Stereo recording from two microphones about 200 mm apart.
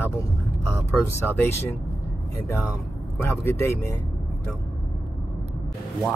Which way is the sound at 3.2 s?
10° left (ahead or behind).